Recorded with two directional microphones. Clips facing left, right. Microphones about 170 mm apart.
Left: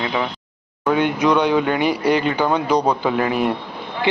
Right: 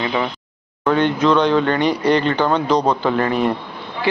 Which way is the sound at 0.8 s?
10° left (ahead or behind).